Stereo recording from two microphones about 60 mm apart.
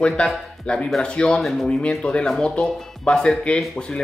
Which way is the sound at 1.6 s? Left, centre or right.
Centre.